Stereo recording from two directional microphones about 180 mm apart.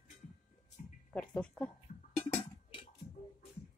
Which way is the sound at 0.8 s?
45° left (ahead or behind).